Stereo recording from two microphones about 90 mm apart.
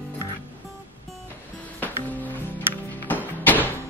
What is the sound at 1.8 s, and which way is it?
Music, 20° left (ahead or behind).